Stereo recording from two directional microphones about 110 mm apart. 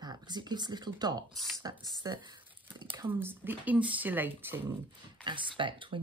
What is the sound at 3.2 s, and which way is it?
Speech, 20° right (ahead or behind).